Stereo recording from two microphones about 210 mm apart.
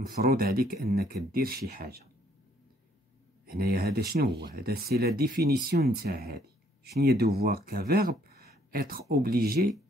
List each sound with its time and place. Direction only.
0.1 s speech: 45° right (ahead or behind)
3.4 s speech: 45° right (ahead or behind)